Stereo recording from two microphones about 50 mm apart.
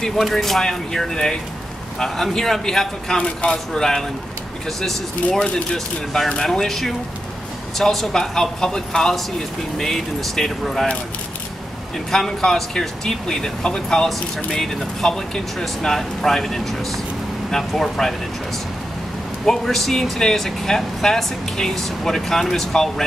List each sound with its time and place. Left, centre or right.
0.0 s speech: centre
5.4 s speech: centre
12.1 s speech: centre
19.4 s speech: centre